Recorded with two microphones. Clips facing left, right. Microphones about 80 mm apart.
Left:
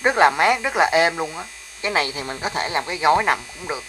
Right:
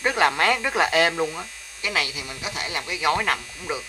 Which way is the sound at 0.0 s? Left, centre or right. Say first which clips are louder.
Left 5 dB; left.